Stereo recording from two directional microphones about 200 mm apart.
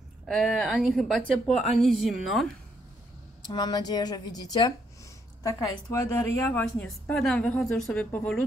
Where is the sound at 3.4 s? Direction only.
20° left (ahead or behind).